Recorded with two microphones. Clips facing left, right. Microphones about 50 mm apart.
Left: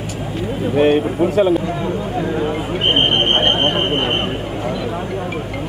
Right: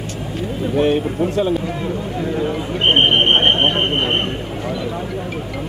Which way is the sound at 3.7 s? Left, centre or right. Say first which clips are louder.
Left 1 dB; centre.